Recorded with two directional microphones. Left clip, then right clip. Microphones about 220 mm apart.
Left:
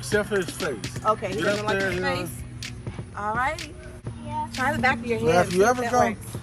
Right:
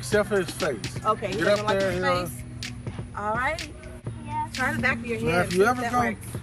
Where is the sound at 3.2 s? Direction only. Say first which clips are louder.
Left 1 dB; 5° left (ahead or behind).